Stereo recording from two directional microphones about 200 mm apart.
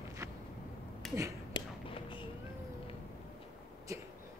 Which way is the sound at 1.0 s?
Centre (ahead or behind).